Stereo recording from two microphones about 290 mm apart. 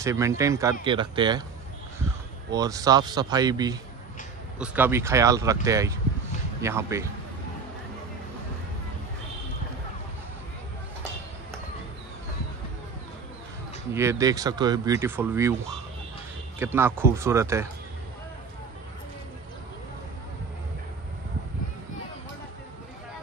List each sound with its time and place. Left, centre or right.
0.0 s speech: centre
2.5 s speech: centre
13.9 s speech: centre
16.5 s speech: centre